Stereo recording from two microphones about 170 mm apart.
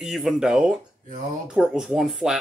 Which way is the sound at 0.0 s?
Centre (ahead or behind).